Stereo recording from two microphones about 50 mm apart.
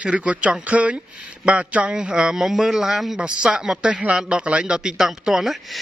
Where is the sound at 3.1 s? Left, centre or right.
Centre.